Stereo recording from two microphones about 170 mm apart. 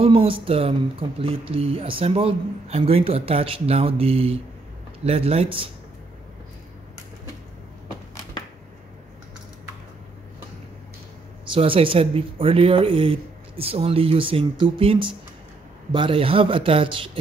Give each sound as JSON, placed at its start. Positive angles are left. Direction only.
{"t": 0.0, "sound": "speech", "side_deg": -35}
{"t": 11.5, "sound": "speech", "side_deg": -30}